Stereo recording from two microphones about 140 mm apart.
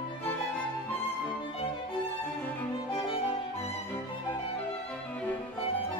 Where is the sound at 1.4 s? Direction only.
40° left (ahead or behind).